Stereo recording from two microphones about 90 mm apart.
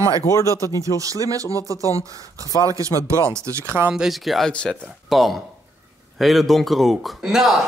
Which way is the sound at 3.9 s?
5° right (ahead or behind).